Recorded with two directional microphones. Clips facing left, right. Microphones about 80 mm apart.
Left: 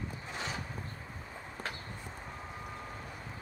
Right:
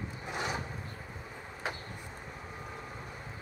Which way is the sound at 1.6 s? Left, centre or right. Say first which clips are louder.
Right 4 dB; centre.